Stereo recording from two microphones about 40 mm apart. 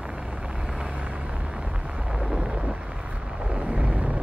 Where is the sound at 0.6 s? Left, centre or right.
Right.